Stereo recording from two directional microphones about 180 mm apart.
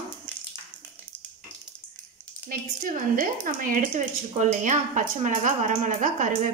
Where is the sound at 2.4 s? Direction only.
50° right (ahead or behind).